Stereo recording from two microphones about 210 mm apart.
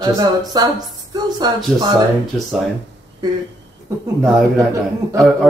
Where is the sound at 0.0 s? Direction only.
20° right (ahead or behind).